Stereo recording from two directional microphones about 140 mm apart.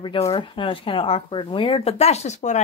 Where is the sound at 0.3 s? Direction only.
40° left (ahead or behind).